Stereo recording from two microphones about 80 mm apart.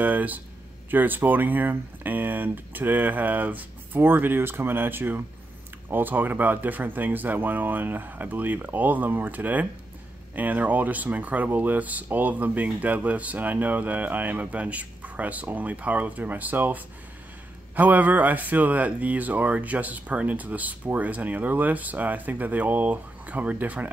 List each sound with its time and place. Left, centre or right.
0.0 s speech: right